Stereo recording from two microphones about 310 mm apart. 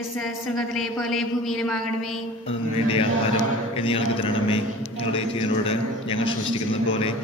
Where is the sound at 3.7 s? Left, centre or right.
Centre.